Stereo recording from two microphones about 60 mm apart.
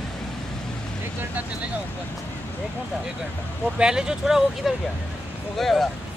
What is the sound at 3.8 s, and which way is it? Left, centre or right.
Speech, centre.